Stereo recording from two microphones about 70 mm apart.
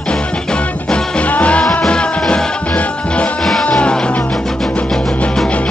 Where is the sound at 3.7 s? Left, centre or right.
Centre.